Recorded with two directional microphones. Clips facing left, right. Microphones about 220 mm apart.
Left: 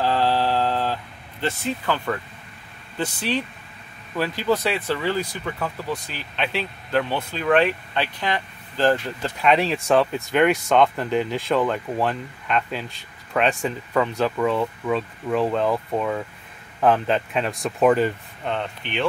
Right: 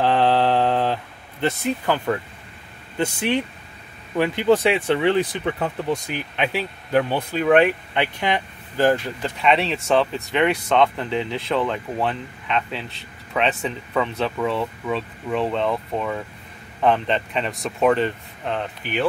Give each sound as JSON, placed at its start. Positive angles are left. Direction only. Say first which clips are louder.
{"t": 0.0, "sound": "mantra", "louder": "right 3 dB", "side_deg": -20}
{"t": 1.4, "sound": "speech", "louder": "right 3 dB", "side_deg": -15}
{"t": 4.2, "sound": "speech", "louder": "right 5 dB", "side_deg": -20}
{"t": 9.2, "sound": "speech", "louder": "left 2 dB", "side_deg": 0}